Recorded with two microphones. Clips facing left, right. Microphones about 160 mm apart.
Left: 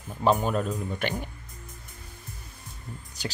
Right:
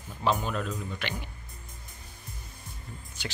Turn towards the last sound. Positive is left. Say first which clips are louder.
# left 4 dB
turn(degrees=40)  # may be behind; listen again after turning